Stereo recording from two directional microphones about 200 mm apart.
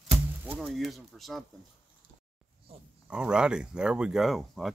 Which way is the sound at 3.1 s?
5° right (ahead or behind).